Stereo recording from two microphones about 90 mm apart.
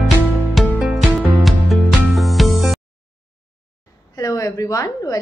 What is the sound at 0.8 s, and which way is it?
Music, centre (ahead or behind).